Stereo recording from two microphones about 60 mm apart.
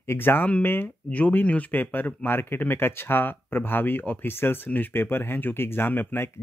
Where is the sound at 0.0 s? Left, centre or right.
Left.